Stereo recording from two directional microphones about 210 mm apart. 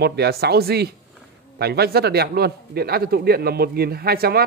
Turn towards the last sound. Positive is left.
turn(degrees=-45)  # may be behind; listen again after turning